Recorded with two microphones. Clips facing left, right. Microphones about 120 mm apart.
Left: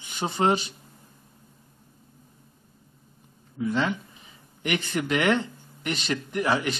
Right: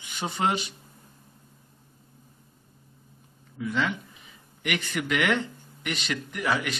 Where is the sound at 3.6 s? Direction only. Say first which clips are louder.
Left 2 dB; 35° left (ahead or behind).